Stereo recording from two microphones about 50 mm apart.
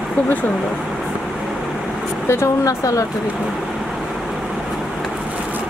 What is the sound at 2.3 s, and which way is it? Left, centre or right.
Speech, left.